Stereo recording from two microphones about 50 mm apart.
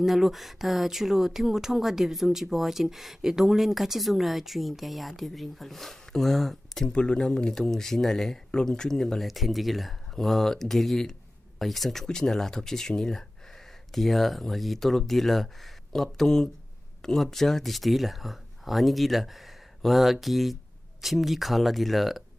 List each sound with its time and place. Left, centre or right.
0.0 s speech: centre
6.9 s speech: centre
8.5 s speech: centre